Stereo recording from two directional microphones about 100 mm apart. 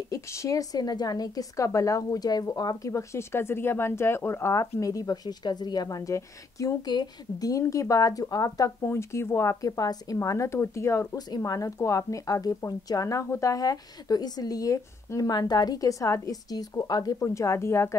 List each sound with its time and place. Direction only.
0.1 s a woman's voice: 30° left (ahead or behind)
11.1 s a woman's voice: 40° left (ahead or behind)